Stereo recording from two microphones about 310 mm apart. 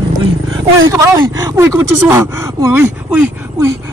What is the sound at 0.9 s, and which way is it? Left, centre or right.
Speech, centre.